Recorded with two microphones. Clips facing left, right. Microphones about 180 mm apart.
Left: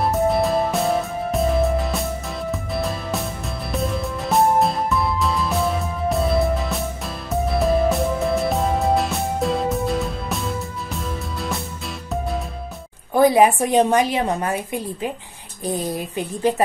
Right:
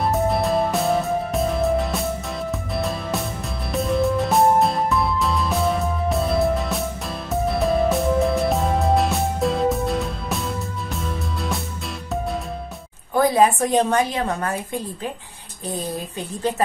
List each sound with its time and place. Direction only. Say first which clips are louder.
0.0 s music: left 2 dB; centre (ahead or behind)
13.1 s a woman's voice: left 3 dB; 15° left (ahead or behind)
15.8 s speech: left 3 dB; 10° left (ahead or behind)